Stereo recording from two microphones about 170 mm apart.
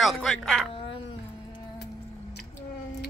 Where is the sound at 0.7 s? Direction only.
30° left (ahead or behind).